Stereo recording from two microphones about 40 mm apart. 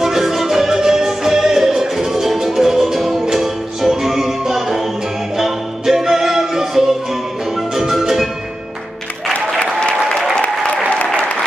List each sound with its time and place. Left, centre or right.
0.0 s music: centre
9.6 s applause: left